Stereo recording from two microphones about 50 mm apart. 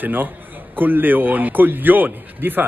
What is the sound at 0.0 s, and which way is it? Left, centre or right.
Speech, right.